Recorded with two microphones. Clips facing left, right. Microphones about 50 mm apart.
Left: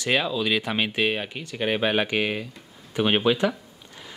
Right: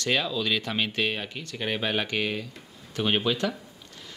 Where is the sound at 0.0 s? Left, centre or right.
Centre.